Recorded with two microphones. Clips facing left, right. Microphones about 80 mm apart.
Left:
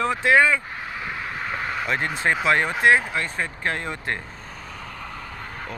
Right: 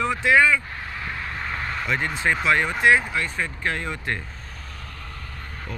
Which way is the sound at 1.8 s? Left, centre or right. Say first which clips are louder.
Even; left.